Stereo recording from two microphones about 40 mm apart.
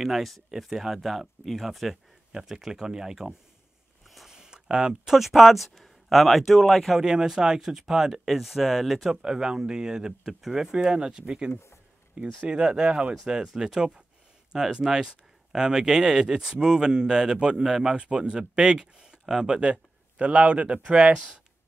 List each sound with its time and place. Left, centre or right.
0.0 s speech: centre
2.3 s speech: centre
4.3 s a sound: centre
5.1 s speech: centre
7.0 s speech: centre
9.1 s speech: centre